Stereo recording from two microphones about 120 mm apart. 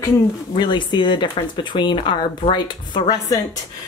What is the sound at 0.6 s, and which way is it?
Speech, 40° left (ahead or behind).